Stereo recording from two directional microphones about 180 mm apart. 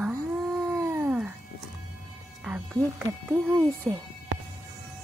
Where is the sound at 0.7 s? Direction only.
15° right (ahead or behind).